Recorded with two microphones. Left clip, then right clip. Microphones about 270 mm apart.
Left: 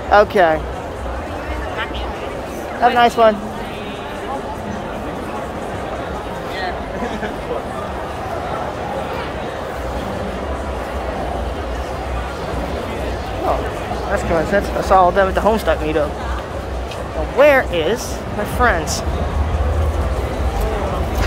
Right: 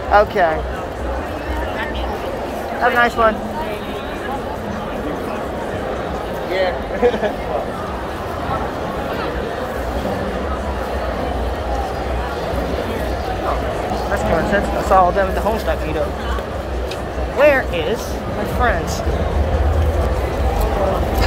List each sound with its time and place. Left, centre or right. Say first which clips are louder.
0.1 s speech: left 2 dB; left
2.8 s speech: left 3 dB; left
14.3 s speech: left 1 dB; left
17.4 s speech: left 2 dB; centre